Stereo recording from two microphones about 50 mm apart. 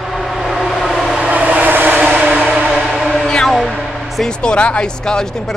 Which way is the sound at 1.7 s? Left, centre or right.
Right.